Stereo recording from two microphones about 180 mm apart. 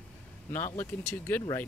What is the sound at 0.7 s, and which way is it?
Speech, 10° left (ahead or behind).